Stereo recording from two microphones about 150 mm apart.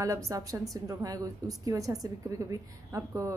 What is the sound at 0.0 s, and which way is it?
A woman's voice, 20° right (ahead or behind).